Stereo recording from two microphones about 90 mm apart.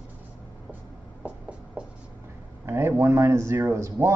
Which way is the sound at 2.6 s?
30° right (ahead or behind).